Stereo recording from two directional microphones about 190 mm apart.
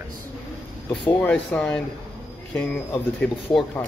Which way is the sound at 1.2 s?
5° left (ahead or behind).